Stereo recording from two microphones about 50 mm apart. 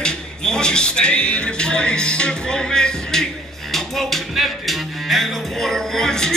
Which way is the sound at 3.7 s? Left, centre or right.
Centre.